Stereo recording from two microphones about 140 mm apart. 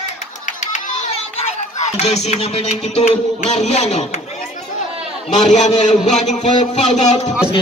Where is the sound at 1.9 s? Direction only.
50° left (ahead or behind).